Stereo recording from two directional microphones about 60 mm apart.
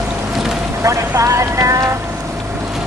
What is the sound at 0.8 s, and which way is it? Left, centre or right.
Vehicle, right.